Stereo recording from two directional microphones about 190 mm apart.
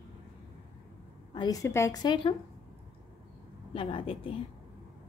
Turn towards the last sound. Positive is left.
turn(degrees=30)  # may be behind; listen again after turning